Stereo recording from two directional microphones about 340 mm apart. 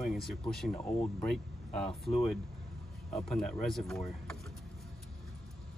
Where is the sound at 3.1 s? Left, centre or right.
Centre.